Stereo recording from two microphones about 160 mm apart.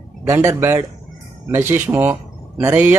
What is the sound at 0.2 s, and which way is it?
Speech, 15° right (ahead or behind).